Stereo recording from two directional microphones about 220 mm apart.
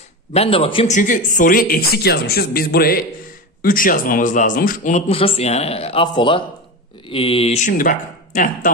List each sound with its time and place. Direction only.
0.3 s speech: 25° left (ahead or behind)